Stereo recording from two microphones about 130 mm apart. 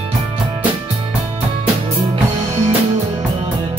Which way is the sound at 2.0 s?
50° right (ahead or behind).